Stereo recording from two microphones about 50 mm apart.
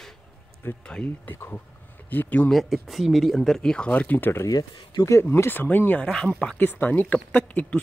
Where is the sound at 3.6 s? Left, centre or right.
Centre.